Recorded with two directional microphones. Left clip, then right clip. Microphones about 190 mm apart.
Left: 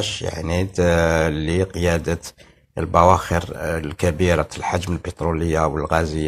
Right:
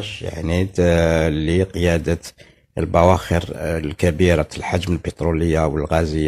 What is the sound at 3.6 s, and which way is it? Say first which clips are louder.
Speech: right 1 dB; 50° right (ahead or behind).